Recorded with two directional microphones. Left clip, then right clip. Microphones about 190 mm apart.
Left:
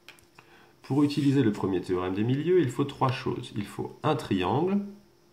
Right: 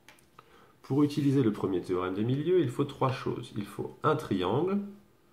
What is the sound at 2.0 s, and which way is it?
Speech, 35° left (ahead or behind).